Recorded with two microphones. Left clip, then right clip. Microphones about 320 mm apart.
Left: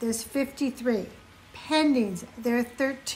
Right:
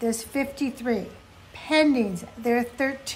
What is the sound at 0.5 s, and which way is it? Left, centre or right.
Speech, right.